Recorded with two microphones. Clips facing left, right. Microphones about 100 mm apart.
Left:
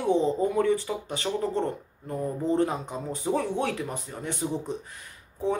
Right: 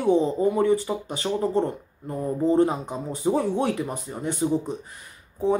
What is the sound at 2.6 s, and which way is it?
Speech, 15° right (ahead or behind).